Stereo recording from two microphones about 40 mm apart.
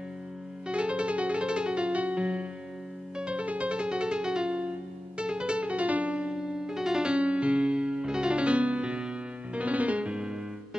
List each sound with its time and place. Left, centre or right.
0.7 s music: right
6.3 s music: centre